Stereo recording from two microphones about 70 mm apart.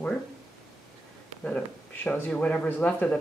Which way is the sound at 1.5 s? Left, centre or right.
Centre.